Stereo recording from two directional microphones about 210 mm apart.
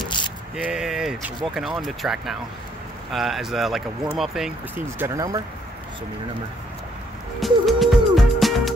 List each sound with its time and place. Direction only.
0.0 s a sound: 20° left (ahead or behind)
0.7 s speech: 5° right (ahead or behind)
7.3 s music: centre (ahead or behind)